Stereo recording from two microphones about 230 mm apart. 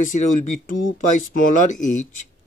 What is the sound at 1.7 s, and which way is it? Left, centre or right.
Speech, left.